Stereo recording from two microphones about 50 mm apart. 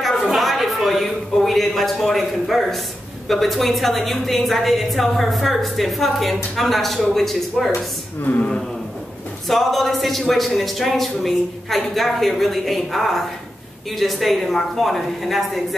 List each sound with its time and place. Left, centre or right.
0.3 s a sound: centre
3.3 s a woman's voice: centre
8.2 s speech: left
9.5 s a woman's voice: centre